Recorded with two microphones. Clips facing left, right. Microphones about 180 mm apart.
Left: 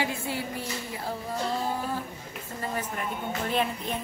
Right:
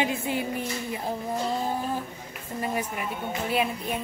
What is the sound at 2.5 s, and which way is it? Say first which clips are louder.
A woman's voice: right 3 dB; 10° right (ahead or behind).